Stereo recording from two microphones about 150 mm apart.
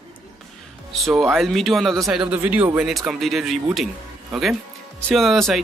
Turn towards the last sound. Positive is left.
turn(degrees=0)  # may be behind; listen again after turning